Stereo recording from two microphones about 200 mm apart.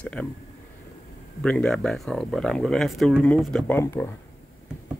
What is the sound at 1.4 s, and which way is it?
Speech, 5° left (ahead or behind).